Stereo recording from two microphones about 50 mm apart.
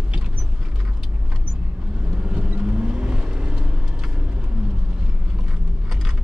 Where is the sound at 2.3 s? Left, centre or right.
Centre.